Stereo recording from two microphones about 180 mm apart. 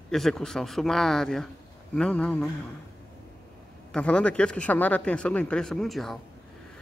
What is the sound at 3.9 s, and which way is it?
A man's voice, 5° left (ahead or behind).